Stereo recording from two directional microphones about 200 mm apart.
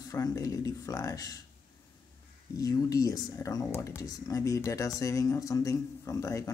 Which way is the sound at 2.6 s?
15° left (ahead or behind).